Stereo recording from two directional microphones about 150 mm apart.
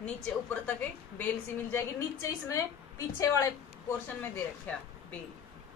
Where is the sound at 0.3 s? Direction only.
10° left (ahead or behind).